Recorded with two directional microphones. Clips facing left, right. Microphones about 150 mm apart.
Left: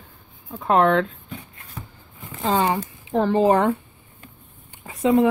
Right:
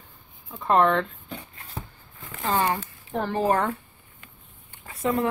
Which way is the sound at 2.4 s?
20° left (ahead or behind).